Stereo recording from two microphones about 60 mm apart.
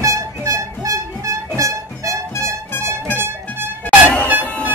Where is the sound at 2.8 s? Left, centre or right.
Right.